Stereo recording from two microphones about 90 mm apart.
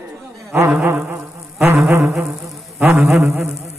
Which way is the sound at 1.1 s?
30° right (ahead or behind).